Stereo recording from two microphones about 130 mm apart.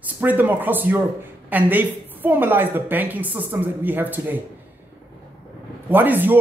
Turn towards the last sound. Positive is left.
turn(degrees=-15)  # may be behind; listen again after turning